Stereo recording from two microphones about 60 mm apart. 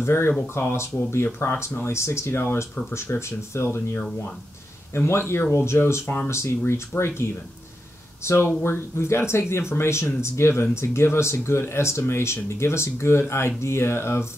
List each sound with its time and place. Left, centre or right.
0.0 s speech: left